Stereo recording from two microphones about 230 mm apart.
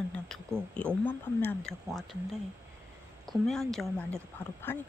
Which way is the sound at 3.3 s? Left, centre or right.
Centre.